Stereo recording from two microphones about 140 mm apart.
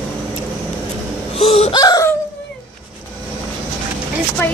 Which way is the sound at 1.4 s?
45° left (ahead or behind).